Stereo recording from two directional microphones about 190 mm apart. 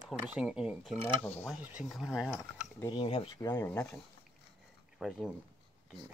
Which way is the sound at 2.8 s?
25° left (ahead or behind).